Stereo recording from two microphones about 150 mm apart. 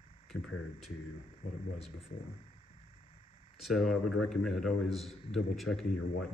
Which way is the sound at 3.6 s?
Centre (ahead or behind).